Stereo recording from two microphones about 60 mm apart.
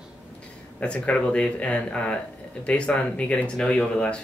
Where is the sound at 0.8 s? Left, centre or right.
Left.